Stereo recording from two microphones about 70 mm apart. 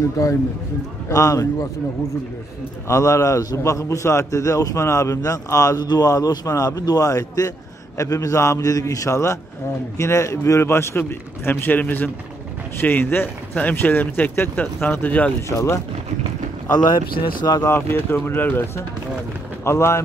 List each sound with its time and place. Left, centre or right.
0.2 s a man's voice: left
2.9 s a man's voice: left
5.8 s a man's voice: left
15.4 s a man's voice: left
16.7 s speech: left
17.6 s speech: left
19.6 s a man's voice: left